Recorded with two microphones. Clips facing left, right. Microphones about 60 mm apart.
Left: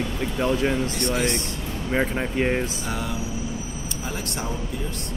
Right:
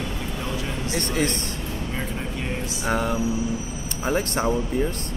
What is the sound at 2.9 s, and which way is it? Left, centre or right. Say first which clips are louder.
Music: right 6 dB; right.